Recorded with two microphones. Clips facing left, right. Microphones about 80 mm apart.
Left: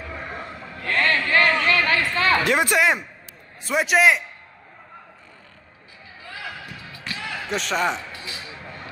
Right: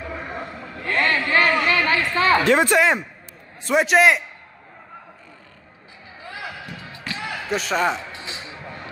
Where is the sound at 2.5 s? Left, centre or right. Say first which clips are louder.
Right 3 dB; right.